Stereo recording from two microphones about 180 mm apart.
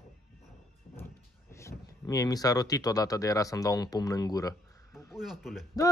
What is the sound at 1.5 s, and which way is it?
Speech, 15° left (ahead or behind).